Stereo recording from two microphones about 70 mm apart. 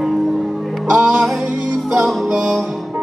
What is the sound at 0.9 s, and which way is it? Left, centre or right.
Music, centre.